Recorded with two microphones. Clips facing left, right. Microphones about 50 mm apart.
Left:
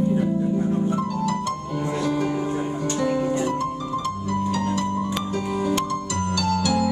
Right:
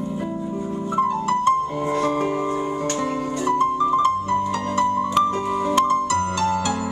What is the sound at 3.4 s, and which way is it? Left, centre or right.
Music, right.